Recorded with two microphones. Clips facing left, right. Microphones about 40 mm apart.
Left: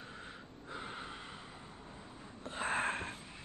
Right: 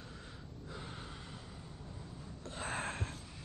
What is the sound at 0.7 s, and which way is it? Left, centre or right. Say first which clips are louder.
Gasp: left 4 dB; left.